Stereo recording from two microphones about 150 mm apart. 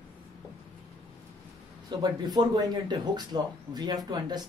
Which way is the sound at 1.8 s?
30° right (ahead or behind).